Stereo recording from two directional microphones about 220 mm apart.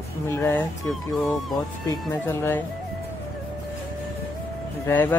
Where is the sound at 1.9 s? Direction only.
10° left (ahead or behind).